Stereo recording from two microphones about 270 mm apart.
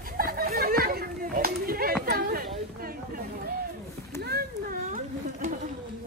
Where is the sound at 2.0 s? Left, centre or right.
Right.